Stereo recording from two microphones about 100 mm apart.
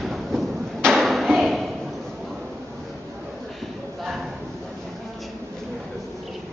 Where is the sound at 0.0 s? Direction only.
Centre (ahead or behind).